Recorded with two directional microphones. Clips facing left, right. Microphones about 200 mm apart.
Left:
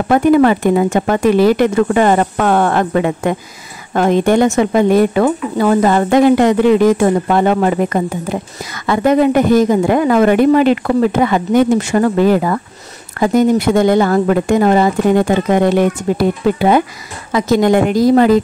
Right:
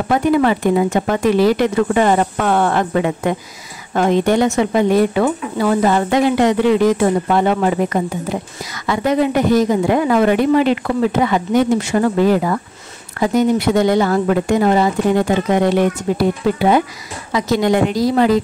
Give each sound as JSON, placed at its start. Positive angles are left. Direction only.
{"t": 0.1, "sound": "a woman's voice", "side_deg": 50}